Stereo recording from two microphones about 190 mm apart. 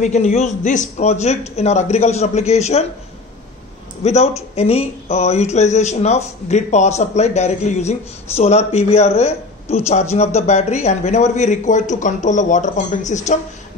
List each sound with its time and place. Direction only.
0.0 s speech: 35° left (ahead or behind)
4.0 s speech: 35° left (ahead or behind)